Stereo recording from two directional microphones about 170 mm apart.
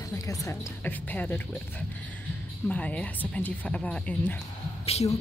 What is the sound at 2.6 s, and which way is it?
Speech, 5° left (ahead or behind).